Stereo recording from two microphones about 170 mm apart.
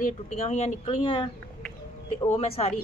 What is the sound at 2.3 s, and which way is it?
Speech, 40° left (ahead or behind).